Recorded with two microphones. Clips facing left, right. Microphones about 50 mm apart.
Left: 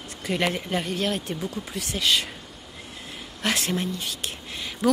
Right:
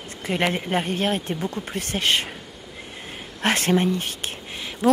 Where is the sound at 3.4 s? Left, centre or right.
Right.